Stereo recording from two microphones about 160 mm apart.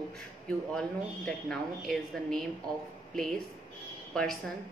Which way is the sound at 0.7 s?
5° left (ahead or behind).